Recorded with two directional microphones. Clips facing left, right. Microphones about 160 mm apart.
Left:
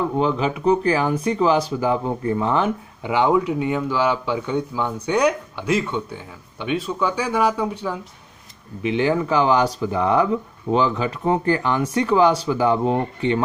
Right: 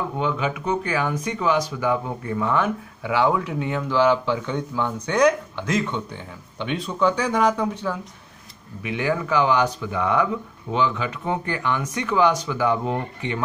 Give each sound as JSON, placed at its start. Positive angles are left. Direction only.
{"t": 0.2, "sound": "speech", "side_deg": 35}
{"t": 8.8, "sound": "speech", "side_deg": 25}